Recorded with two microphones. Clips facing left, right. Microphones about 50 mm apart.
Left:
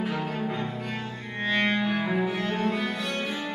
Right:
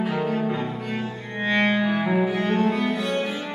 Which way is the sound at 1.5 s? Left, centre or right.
Centre.